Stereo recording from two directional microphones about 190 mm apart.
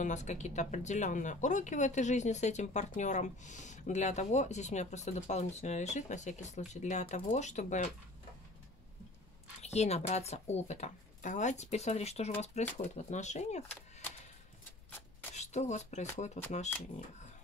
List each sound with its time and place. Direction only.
0.0 s speech: 40° left (ahead or behind)
9.6 s speech: 35° left (ahead or behind)
15.3 s speech: 35° left (ahead or behind)